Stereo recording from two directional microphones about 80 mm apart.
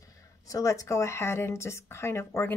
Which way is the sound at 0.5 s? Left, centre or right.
Left.